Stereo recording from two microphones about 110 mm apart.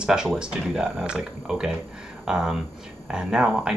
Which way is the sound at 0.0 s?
5° right (ahead or behind).